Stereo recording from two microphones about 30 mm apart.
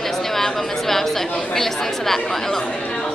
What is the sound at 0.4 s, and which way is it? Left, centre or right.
Chatter, centre.